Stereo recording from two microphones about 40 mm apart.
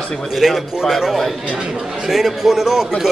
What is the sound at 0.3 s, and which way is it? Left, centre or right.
A man's voice, centre.